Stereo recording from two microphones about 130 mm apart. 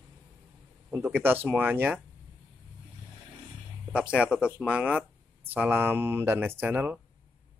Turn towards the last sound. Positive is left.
turn(degrees=-15)  # may be behind; listen again after turning